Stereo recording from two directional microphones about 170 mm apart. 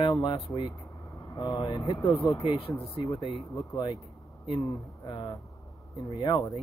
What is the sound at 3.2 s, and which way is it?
Speech, centre (ahead or behind).